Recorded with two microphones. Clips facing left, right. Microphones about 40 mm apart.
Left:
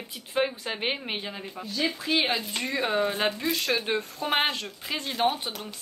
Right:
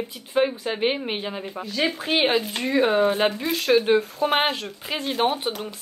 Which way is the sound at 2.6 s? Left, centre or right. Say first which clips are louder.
Right 7 dB; centre.